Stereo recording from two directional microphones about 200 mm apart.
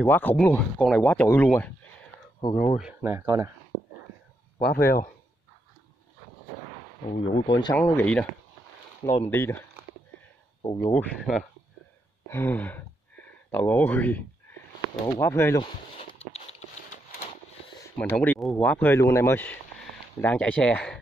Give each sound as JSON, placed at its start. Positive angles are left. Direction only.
{"t": 0.0, "sound": "speech", "side_deg": 10}
{"t": 2.5, "sound": "speech", "side_deg": 40}
{"t": 2.8, "sound": "speech", "side_deg": -10}
{"t": 4.6, "sound": "a man's voice", "side_deg": 50}
{"t": 7.1, "sound": "speech", "side_deg": 30}
{"t": 7.7, "sound": "speech", "side_deg": 10}
{"t": 9.3, "sound": "speech", "side_deg": 10}
{"t": 10.9, "sound": "speech", "side_deg": 5}
{"t": 12.3, "sound": "speech", "side_deg": 10}
{"t": 15.6, "sound": "a sound", "side_deg": 25}
{"t": 17.9, "sound": "speech", "side_deg": 10}